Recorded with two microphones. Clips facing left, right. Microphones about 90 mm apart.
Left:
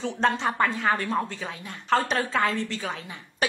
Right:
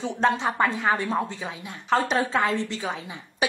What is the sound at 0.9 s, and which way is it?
A woman's voice, 20° right (ahead or behind).